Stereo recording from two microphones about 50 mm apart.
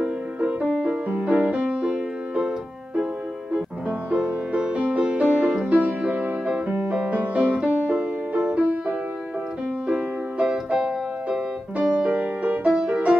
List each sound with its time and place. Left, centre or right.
0.0 s music: right
4.1 s music: right
9.8 s music: centre